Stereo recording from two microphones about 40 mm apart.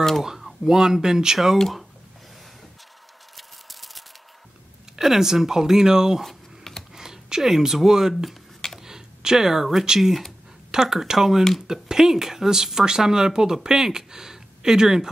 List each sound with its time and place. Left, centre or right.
0.7 s speech: centre
3.3 s a sound: centre
4.9 s speech: centre
6.2 s computer keyboard: centre
7.0 s speech: centre